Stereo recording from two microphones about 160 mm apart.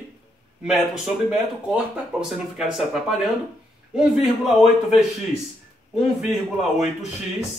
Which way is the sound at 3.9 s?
Centre (ahead or behind).